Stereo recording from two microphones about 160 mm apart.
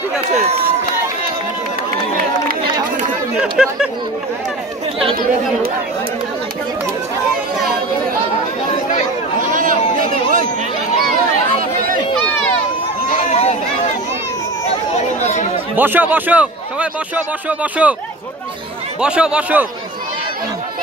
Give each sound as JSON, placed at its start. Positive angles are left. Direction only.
{"t": 3.3, "sound": "speech", "side_deg": -5}
{"t": 9.5, "sound": "a sound", "side_deg": -55}
{"t": 13.2, "sound": "a sound", "side_deg": 45}
{"t": 15.1, "sound": "chatter", "side_deg": 45}
{"t": 15.7, "sound": "a man's voice", "side_deg": -10}
{"t": 18.9, "sound": "a man's voice", "side_deg": -5}